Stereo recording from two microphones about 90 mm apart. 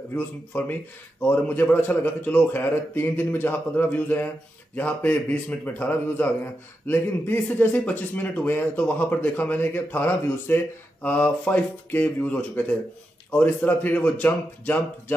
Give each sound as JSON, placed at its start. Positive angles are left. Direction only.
{"t": 0.1, "sound": "speech", "side_deg": 20}